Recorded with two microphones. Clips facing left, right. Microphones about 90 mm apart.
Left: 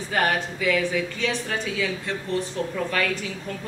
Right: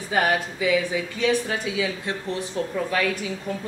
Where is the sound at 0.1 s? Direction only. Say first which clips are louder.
Right 2 dB; 5° right (ahead or behind).